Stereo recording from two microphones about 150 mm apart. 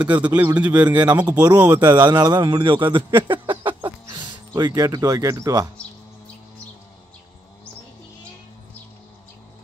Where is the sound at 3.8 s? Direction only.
25° right (ahead or behind).